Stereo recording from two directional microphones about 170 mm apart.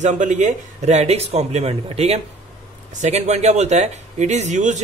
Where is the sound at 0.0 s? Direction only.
45° right (ahead or behind).